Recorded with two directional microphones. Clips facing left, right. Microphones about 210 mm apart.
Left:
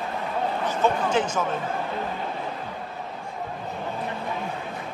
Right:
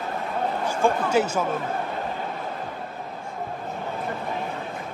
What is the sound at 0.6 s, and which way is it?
Speech, 10° right (ahead or behind).